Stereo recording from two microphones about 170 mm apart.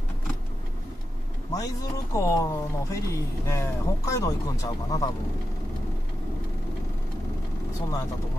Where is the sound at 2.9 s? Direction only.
15° left (ahead or behind).